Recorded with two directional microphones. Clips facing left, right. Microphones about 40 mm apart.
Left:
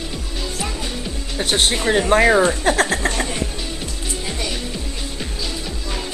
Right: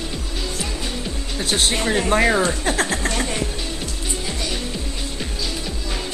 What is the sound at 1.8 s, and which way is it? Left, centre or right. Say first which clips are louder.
Speech: left 4 dB; centre.